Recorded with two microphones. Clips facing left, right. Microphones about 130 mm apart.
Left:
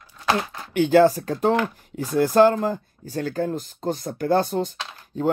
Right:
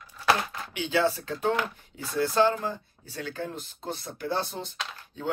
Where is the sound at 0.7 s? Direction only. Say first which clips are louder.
Left 10 dB; 45° left (ahead or behind).